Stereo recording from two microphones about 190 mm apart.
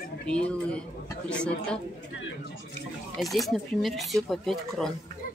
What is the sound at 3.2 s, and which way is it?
Speech, centre (ahead or behind).